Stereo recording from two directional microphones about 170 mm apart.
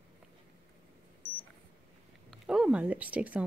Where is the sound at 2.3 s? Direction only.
5° right (ahead or behind).